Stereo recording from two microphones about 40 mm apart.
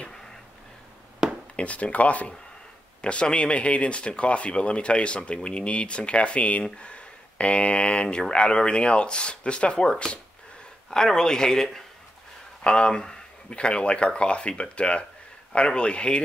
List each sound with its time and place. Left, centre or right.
1.6 s speech: left